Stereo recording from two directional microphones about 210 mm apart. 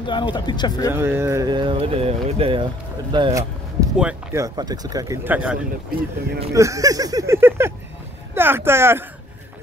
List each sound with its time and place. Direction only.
0.0 s speech: 25° left (ahead or behind)
0.9 s speech: 10° right (ahead or behind)
3.9 s speech: 5° right (ahead or behind)